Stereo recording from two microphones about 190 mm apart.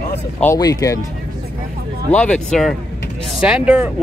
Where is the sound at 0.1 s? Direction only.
10° left (ahead or behind).